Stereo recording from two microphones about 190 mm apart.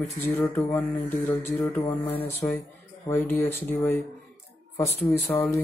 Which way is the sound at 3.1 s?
10° left (ahead or behind).